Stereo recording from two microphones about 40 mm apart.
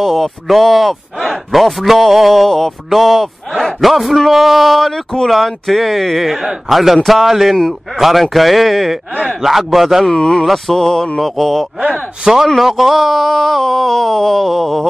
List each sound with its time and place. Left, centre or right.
0.0 s speech: centre
10.1 s speech: centre
10.4 s speech: centre